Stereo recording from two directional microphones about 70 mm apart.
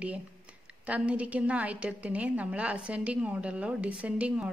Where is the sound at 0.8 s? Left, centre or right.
Centre.